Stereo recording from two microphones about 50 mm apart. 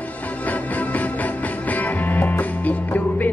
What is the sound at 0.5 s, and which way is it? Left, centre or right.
Music, left.